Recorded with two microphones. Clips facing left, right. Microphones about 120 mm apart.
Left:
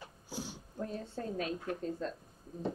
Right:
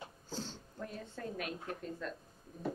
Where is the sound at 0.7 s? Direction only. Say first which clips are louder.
Left 6 dB; 35° left (ahead or behind).